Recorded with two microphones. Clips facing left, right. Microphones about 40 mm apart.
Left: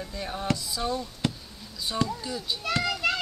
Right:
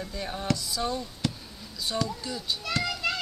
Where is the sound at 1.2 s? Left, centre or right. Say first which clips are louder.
Left 2 dB; left.